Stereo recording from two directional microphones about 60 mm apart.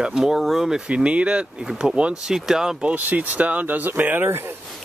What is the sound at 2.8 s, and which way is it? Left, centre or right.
Speech, right.